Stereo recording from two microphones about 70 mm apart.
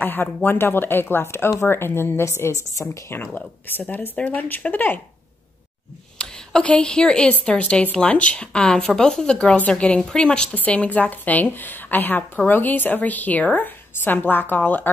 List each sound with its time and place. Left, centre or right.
0.0 s speech: left
2.8 s speech: left
3.8 s a woman's voice: left
6.1 s a woman's voice: centre